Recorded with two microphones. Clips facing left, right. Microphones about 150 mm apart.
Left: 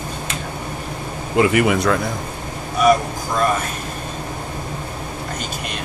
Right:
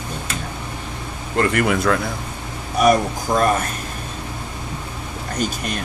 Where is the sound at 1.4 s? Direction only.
5° left (ahead or behind).